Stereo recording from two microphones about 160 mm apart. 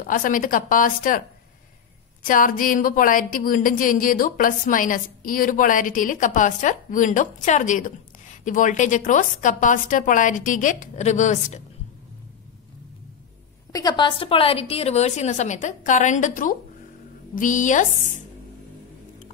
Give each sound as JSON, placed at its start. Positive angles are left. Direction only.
{"t": 0.0, "sound": "speech", "side_deg": 60}
{"t": 2.2, "sound": "a woman's voice", "side_deg": 60}
{"t": 13.7, "sound": "a woman's voice", "side_deg": 25}